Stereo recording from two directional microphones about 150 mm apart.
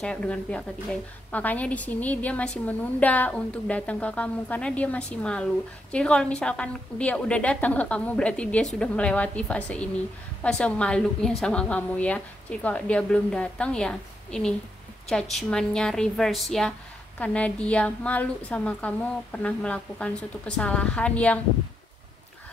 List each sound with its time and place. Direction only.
0.0 s a woman's voice: 5° left (ahead or behind)